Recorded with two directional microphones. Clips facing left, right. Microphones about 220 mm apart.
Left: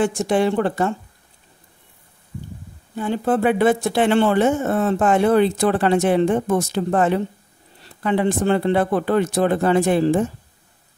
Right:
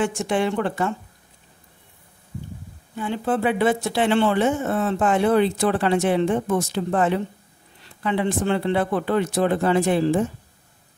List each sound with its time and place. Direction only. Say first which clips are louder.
0.0 s a woman's voice: left 4 dB; 35° left (ahead or behind)
3.0 s speech: left 4 dB; 45° left (ahead or behind)